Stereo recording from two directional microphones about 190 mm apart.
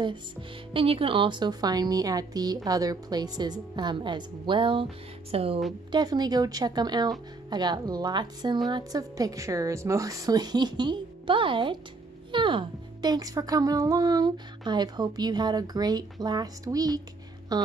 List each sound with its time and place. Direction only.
0.7 s a woman's voice: 30° right (ahead or behind)